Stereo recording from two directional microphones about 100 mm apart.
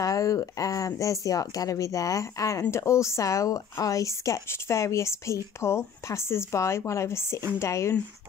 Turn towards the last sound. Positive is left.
turn(degrees=30)  # may be behind; listen again after turning